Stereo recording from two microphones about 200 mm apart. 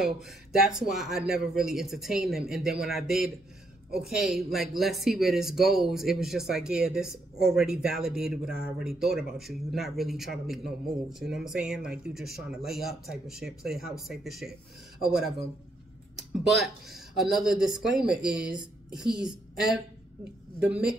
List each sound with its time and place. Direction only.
0.0 s a woman's voice: centre (ahead or behind)